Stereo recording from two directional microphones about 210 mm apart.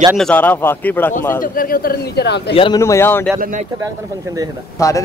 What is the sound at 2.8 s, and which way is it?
Speech, 10° left (ahead or behind).